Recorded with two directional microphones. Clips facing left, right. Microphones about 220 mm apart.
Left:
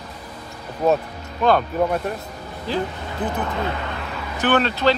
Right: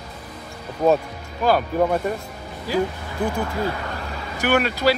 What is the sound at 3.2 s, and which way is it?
Speech, 20° left (ahead or behind).